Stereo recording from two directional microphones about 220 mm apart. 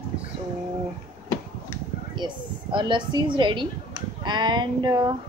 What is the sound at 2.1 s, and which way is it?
A woman's voice, 20° right (ahead or behind).